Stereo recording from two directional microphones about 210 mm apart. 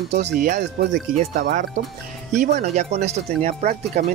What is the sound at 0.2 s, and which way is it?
Speech, 45° right (ahead or behind).